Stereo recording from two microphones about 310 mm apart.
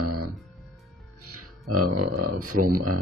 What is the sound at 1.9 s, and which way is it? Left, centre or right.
Speech, right.